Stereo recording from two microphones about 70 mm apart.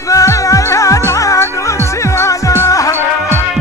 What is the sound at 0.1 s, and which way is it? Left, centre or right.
Music, left.